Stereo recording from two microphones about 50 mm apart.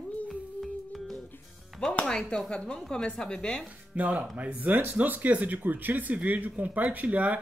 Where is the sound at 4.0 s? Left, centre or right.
Right.